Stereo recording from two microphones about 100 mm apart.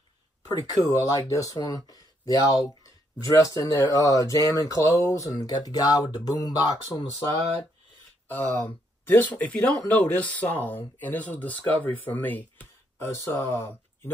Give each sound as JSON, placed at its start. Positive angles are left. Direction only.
{"t": 0.5, "sound": "speech", "side_deg": 35}
{"t": 3.7, "sound": "speech", "side_deg": -40}
{"t": 4.0, "sound": "speech", "side_deg": 35}
{"t": 8.3, "sound": "speech", "side_deg": 20}